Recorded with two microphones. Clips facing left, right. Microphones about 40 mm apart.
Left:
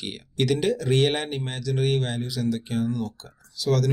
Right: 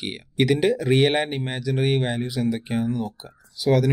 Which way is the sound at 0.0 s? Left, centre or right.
Centre.